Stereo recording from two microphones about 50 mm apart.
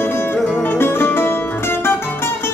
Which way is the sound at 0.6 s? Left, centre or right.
Left.